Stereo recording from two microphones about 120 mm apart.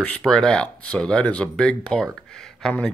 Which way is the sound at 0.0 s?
10° left (ahead or behind).